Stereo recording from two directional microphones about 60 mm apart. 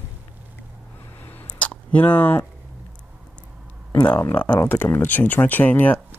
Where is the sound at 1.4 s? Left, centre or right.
Left.